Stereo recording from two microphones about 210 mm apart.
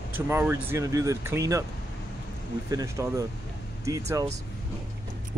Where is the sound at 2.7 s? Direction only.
15° right (ahead or behind).